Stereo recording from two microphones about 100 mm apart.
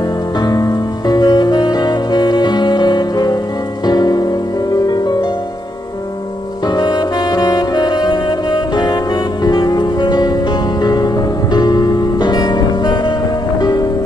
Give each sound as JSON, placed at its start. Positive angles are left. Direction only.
{"t": 0.4, "sound": "music", "side_deg": 40}
{"t": 6.6, "sound": "saxophone", "side_deg": 45}
{"t": 13.6, "sound": "music", "side_deg": 40}